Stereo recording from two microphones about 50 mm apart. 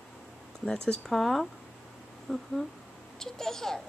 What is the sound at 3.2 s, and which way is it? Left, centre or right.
Speech, centre.